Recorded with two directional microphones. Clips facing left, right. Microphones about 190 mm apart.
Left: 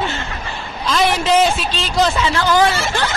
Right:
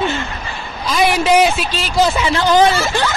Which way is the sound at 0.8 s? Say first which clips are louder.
Right 2 dB; 10° right (ahead or behind).